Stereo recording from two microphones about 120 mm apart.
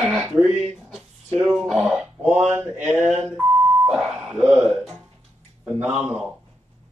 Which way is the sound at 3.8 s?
Centre (ahead or behind).